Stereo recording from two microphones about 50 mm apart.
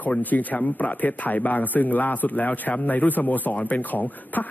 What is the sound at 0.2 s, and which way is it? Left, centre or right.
A man's voice, left.